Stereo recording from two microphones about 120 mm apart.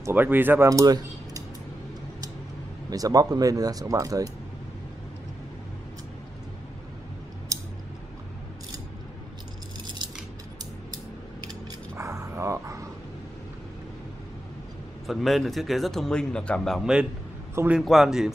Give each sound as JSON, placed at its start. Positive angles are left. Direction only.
{"t": 0.0, "sound": "speech", "side_deg": -15}
{"t": 0.7, "sound": "speech", "side_deg": -30}
{"t": 2.9, "sound": "speech", "side_deg": -30}
{"t": 7.5, "sound": "scissors", "side_deg": -30}
{"t": 11.9, "sound": "dog", "side_deg": -25}
{"t": 15.0, "sound": "speech", "side_deg": 0}